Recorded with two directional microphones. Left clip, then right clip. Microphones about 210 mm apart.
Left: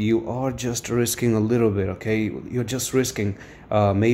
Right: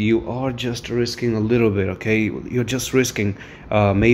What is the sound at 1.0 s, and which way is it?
Speech, 20° left (ahead or behind).